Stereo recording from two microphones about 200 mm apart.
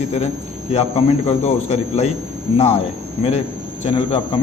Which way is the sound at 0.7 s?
30° left (ahead or behind).